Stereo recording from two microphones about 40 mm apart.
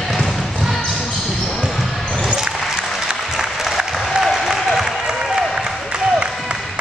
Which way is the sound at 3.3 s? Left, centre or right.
Centre.